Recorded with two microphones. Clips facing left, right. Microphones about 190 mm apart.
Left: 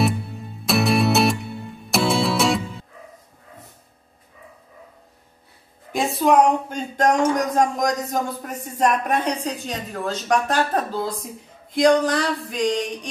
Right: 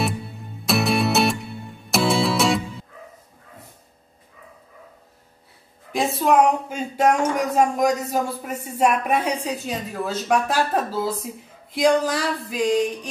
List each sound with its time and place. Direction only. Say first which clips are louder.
0.7 s music: left 2 dB; centre (ahead or behind)
5.9 s speech: left 1 dB; centre (ahead or behind)